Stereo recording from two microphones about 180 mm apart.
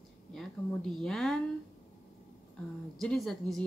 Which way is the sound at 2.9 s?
Centre (ahead or behind).